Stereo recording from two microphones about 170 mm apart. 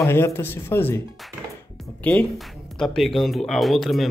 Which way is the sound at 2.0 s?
5° left (ahead or behind).